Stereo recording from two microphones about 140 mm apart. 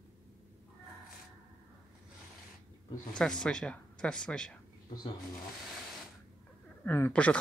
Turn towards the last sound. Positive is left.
turn(degrees=10)  # may be behind; listen again after turning